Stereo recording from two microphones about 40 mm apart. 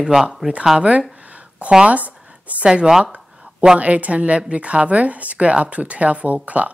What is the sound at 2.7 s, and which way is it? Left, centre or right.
Speech, centre.